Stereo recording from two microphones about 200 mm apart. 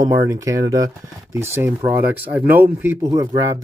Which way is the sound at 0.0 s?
15° right (ahead or behind).